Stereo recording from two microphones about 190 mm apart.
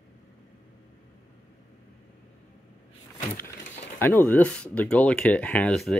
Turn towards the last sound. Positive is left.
turn(degrees=5)  # may be behind; listen again after turning